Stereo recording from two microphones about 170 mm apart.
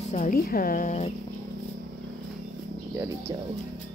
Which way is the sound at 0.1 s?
50° left (ahead or behind).